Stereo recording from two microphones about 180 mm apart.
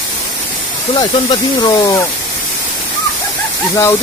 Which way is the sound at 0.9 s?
20° left (ahead or behind).